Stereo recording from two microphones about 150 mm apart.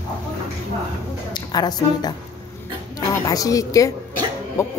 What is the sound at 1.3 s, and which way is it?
A woman's voice, 30° left (ahead or behind).